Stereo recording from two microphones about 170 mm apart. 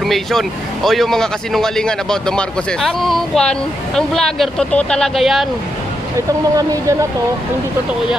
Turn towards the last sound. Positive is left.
turn(degrees=-20)  # may be behind; listen again after turning